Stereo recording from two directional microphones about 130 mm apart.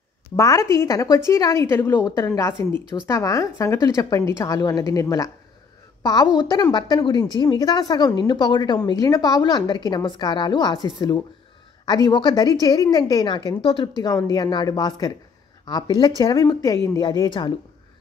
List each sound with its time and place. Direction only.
0.4 s a woman's voice: 25° left (ahead or behind)
6.5 s a woman's voice: 35° left (ahead or behind)
14.2 s a woman's voice: 30° left (ahead or behind)
17.0 s a woman's voice: 35° left (ahead or behind)